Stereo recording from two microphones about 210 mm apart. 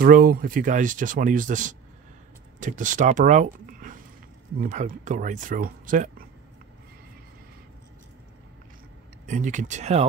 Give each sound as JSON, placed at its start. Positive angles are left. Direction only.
{"t": 0.0, "sound": "speech", "side_deg": -45}
{"t": 3.4, "sound": "a sound", "side_deg": -40}
{"t": 4.6, "sound": "speech", "side_deg": -40}
{"t": 9.2, "sound": "speech", "side_deg": -35}